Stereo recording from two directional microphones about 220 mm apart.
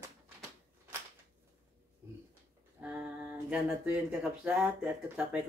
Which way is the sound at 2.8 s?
5° right (ahead or behind).